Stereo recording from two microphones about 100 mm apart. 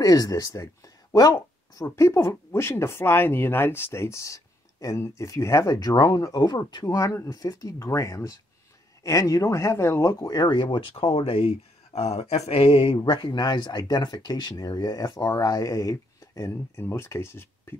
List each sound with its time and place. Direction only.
0.0 s speech: 35° left (ahead or behind)
2.0 s speech: 30° left (ahead or behind)
10.3 s speech: 50° left (ahead or behind); by 17.7 s 25° left (ahead or behind)